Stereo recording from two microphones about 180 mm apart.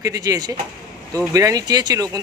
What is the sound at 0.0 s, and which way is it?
Speech, 20° right (ahead or behind).